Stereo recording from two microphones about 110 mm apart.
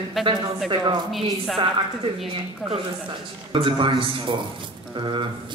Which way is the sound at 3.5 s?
50° right (ahead or behind).